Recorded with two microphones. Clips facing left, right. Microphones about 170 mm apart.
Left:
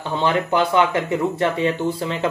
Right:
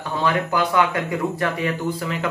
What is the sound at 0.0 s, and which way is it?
Speech, 25° left (ahead or behind).